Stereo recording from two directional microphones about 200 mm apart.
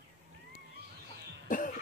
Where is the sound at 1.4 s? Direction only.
40° left (ahead or behind).